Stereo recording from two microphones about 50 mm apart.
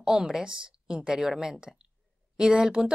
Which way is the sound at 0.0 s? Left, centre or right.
Centre.